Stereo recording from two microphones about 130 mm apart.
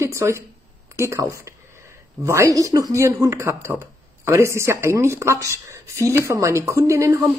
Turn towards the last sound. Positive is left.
turn(degrees=-25)  # may be behind; listen again after turning